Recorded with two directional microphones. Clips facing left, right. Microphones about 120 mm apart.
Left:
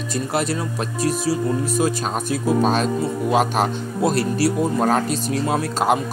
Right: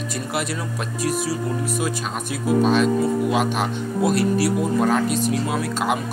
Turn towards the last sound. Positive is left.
turn(degrees=35)  # may be behind; listen again after turning